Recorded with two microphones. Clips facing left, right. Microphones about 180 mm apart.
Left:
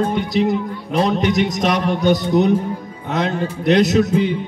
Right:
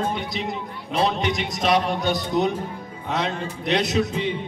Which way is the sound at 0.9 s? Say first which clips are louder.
Left 5 dB; 40° left (ahead or behind).